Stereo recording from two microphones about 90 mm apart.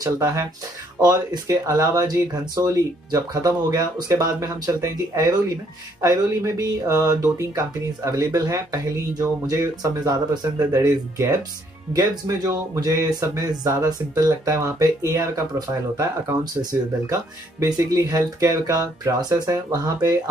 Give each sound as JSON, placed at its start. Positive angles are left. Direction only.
{"t": 0.0, "sound": "speech", "side_deg": -40}
{"t": 17.0, "sound": "speech", "side_deg": -40}